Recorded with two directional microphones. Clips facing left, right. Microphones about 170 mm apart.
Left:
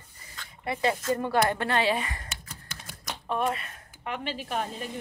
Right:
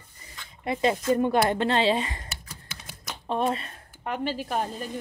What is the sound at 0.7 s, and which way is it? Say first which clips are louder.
Speech: right 3 dB; 20° right (ahead or behind).